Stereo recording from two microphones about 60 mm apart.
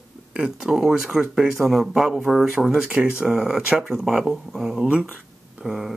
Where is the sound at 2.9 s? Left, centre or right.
Centre.